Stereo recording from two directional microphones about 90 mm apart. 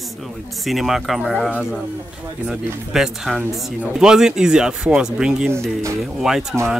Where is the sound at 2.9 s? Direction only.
5° right (ahead or behind).